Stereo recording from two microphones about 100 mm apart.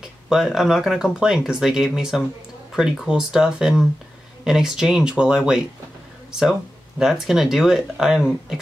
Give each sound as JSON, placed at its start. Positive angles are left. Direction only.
{"t": 0.0, "sound": "speech", "side_deg": -5}
{"t": 7.0, "sound": "speech", "side_deg": -5}